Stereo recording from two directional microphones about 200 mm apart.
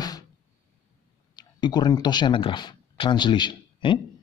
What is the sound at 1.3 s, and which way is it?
Speech, 20° left (ahead or behind).